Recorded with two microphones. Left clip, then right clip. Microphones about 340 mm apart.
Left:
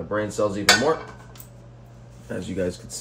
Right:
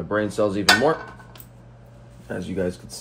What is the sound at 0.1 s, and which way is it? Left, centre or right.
Cutlery, centre.